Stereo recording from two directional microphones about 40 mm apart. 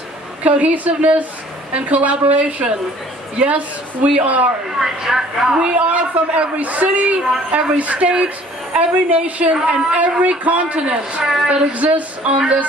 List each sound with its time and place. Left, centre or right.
0.4 s a man's voice: right
4.7 s speech: centre
5.5 s a woman's voice: right
5.8 s a man's voice: right